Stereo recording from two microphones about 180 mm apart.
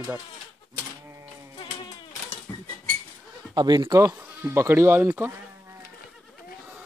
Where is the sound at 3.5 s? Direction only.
25° right (ahead or behind).